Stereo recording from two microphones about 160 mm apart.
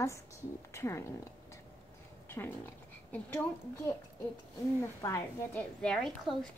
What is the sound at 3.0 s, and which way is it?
Speech, 10° left (ahead or behind).